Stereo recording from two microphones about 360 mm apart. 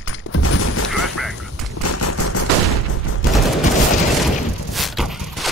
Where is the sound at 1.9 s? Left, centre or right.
Left.